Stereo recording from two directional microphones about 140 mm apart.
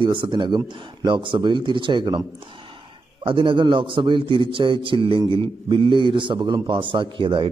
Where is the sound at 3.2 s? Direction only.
35° right (ahead or behind).